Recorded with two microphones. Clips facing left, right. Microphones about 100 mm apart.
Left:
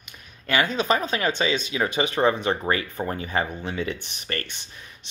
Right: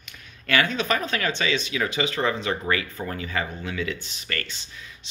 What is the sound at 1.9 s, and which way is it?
Speech, 20° left (ahead or behind).